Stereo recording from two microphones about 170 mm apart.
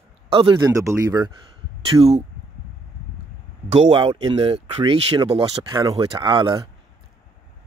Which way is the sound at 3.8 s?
30° right (ahead or behind).